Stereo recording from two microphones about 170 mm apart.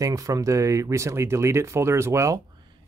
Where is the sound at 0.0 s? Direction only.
20° right (ahead or behind).